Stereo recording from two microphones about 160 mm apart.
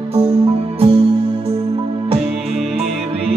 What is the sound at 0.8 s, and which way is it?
Music, 40° right (ahead or behind).